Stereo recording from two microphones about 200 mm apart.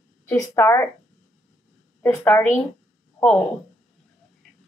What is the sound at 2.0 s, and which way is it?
Speech, 10° left (ahead or behind).